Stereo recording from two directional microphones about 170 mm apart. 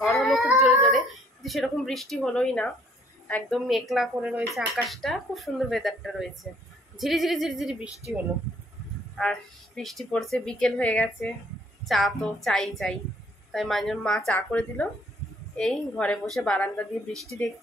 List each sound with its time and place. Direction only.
0.0 s a sound: centre (ahead or behind)
3.3 s speech: 5° left (ahead or behind)
9.1 s speech: 5° left (ahead or behind)